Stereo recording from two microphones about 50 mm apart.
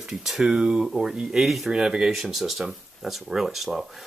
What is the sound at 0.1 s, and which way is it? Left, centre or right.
Speech, centre.